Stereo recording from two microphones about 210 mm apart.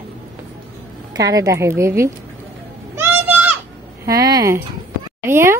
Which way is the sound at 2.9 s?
10° right (ahead or behind).